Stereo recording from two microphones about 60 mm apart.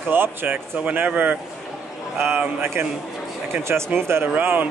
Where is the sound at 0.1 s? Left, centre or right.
Right.